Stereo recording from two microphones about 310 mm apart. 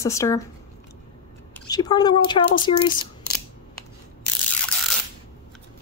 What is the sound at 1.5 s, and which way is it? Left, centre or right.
A woman's voice, centre.